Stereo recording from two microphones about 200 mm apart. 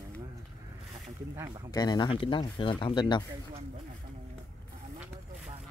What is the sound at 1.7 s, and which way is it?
Speech, 20° left (ahead or behind).